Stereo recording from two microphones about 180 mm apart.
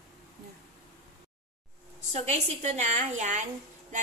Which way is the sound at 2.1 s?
40° right (ahead or behind).